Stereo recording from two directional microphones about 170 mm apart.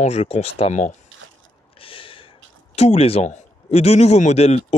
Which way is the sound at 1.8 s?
30° left (ahead or behind).